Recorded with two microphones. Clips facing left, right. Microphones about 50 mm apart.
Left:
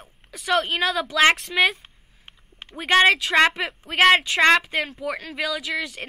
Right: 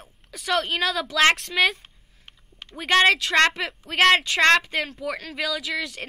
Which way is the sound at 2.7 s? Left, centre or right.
Centre.